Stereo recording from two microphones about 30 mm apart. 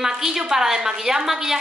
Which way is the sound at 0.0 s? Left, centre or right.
Centre.